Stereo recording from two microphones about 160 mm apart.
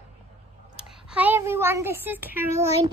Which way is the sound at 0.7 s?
10° right (ahead or behind).